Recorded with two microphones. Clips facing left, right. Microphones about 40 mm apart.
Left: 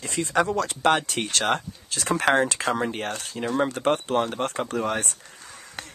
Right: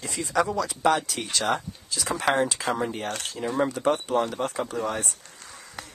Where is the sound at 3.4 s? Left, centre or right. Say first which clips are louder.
Left 2 dB; left.